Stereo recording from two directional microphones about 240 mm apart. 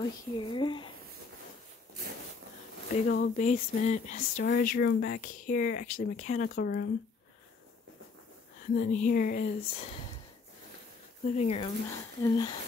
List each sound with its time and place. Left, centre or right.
0.0 s speech: centre
3.1 s speech: left
8.6 s speech: left
11.2 s speech: left